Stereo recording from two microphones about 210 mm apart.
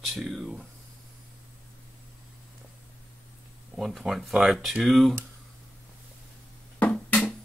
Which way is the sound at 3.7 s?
Centre (ahead or behind).